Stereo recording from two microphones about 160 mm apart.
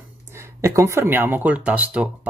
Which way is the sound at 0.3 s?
15° right (ahead or behind).